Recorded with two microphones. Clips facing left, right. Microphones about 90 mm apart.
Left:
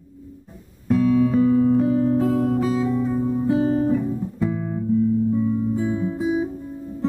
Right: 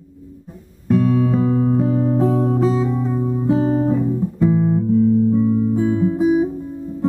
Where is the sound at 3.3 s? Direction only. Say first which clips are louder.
Right 4 dB; 5° right (ahead or behind).